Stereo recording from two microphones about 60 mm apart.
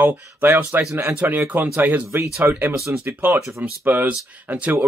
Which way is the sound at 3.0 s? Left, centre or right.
Right.